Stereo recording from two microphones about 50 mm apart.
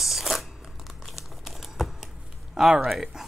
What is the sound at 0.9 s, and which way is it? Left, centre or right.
Crumpling, centre.